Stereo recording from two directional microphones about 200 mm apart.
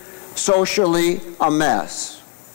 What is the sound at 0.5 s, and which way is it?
Speech, 25° left (ahead or behind).